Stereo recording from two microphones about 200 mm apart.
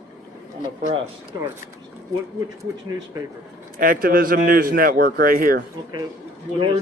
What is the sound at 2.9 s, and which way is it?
Speech, 15° right (ahead or behind).